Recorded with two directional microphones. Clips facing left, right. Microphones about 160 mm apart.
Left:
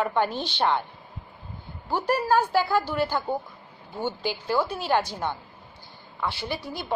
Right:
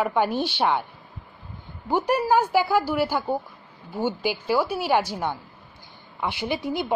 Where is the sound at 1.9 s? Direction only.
15° right (ahead or behind).